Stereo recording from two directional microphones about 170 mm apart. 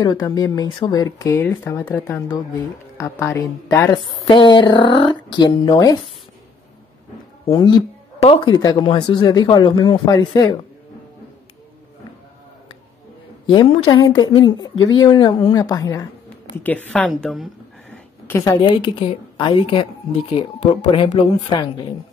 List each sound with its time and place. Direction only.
0.0 s a woman's voice: 20° left (ahead or behind)
7.4 s speech: 25° left (ahead or behind)
13.5 s speech: 30° left (ahead or behind)
16.6 s a woman's voice: 10° left (ahead or behind); by 21.8 s 25° left (ahead or behind)